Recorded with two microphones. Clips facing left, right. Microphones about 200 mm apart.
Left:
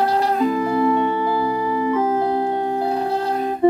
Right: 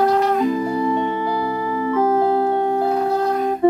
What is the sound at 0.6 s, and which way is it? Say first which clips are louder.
Music: left 2 dB; 20° right (ahead or behind).